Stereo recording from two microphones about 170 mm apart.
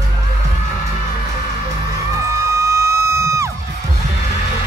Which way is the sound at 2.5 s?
15° right (ahead or behind).